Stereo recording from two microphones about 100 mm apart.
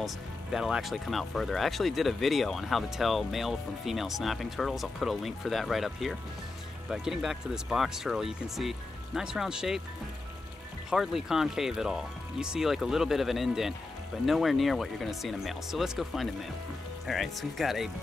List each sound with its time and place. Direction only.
0.0 s speech: 5° right (ahead or behind)
10.9 s speech: 5° right (ahead or behind)